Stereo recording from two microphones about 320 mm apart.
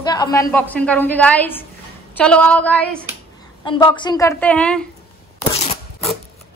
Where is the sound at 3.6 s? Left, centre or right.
Centre.